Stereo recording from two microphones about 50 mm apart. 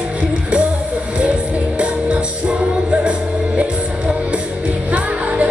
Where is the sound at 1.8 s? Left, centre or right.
Right.